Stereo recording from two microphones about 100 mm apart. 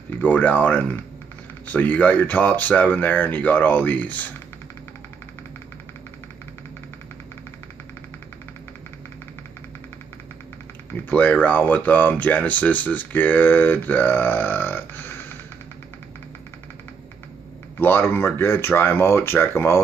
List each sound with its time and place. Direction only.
0.2 s speech: 15° left (ahead or behind)
11.1 s speech: 15° left (ahead or behind)
17.7 s speech: 20° left (ahead or behind)